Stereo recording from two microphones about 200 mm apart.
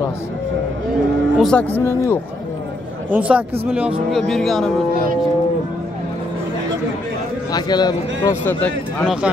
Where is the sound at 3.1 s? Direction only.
5° right (ahead or behind).